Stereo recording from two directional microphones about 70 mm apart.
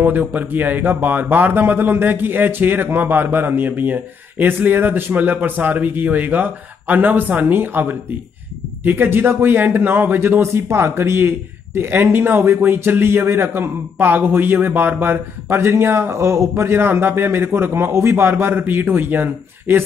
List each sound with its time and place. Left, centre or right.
0.0 s speech: right